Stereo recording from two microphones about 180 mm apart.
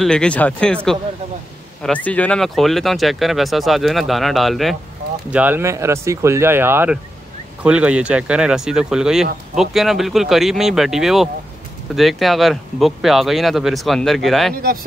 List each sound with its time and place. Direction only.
0.0 s speech: 5° left (ahead or behind)
1.8 s speech: 5° left (ahead or behind)
14.5 s speech: 55° right (ahead or behind)